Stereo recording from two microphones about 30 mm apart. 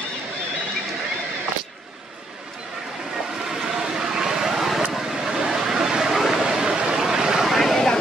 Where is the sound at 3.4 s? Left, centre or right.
Centre.